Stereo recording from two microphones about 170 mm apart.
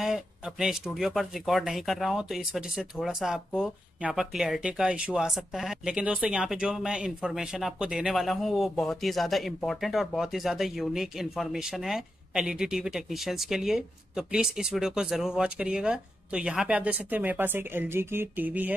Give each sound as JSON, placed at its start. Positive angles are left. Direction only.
{"t": 0.0, "sound": "speech", "side_deg": -5}